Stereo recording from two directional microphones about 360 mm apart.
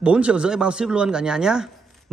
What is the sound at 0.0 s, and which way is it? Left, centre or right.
Speech, centre.